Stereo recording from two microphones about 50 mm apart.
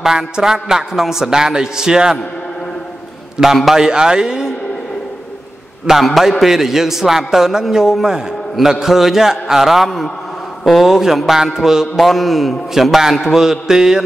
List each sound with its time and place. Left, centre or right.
0.0 s a man's voice: centre
3.4 s a man's voice: centre
5.9 s a man's voice: centre
9.8 s a man's voice: centre